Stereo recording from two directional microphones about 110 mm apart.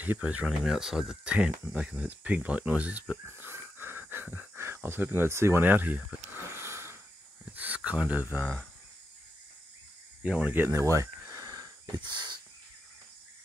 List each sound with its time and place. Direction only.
0.0 s speech: 15° right (ahead or behind)
10.2 s a sound: 15° right (ahead or behind); by 12.0 s 35° right (ahead or behind)
12.1 s crow: 45° right (ahead or behind)